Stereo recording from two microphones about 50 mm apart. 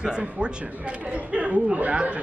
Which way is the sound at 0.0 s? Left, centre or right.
Centre.